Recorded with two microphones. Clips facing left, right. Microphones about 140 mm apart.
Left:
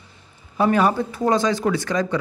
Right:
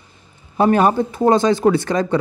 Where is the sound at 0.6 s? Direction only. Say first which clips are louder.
Right 4 dB; 40° right (ahead or behind).